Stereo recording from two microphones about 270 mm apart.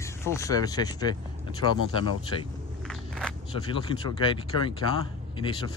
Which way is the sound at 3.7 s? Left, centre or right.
Centre.